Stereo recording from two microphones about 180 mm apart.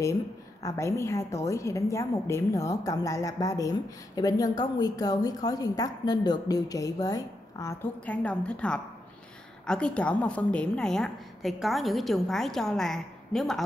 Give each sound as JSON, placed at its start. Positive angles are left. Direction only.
{"t": 0.0, "sound": "a woman's voice", "side_deg": 20}